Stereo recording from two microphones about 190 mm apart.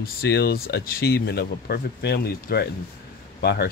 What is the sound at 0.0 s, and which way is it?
Speech, 55° left (ahead or behind).